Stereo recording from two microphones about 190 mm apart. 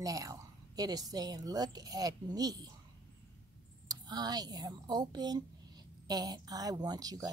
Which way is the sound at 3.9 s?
20° right (ahead or behind).